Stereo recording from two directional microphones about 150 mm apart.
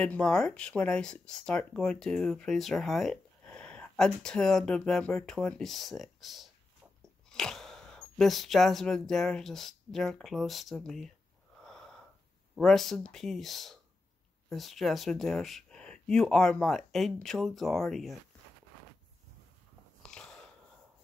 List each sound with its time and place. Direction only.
0.0 s speech: 5° left (ahead or behind)
11.6 s wheeze: 5° left (ahead or behind)
12.5 s speech: centre (ahead or behind)
20.0 s biting: 5° left (ahead or behind)